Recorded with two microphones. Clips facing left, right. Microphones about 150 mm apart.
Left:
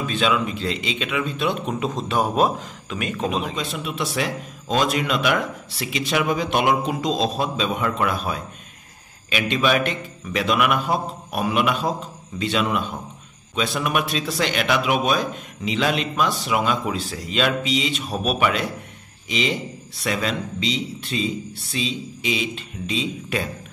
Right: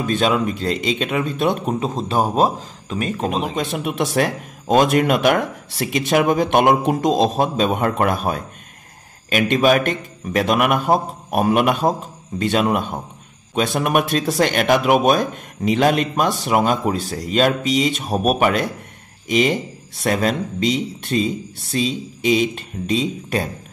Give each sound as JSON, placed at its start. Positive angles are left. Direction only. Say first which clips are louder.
{"t": 0.0, "sound": "speech", "louder": "right 4 dB", "side_deg": -45}
{"t": 1.8, "sound": "speech", "louder": "right 3 dB", "side_deg": -35}
{"t": 3.5, "sound": "speech", "louder": "right 6 dB", "side_deg": -50}